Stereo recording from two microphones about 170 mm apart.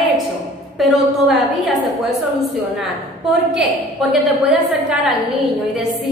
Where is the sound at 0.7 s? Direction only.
Centre (ahead or behind).